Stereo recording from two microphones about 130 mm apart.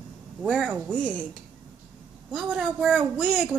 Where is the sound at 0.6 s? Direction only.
15° right (ahead or behind).